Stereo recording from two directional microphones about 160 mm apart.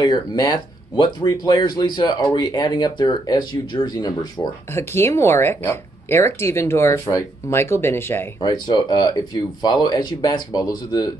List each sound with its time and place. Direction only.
0.0 s speech: 25° left (ahead or behind)
4.7 s speech: 15° left (ahead or behind)
8.4 s speech: 25° left (ahead or behind)